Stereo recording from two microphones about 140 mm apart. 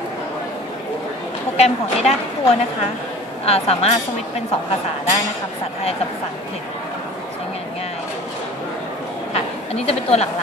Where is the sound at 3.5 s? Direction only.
50° left (ahead or behind).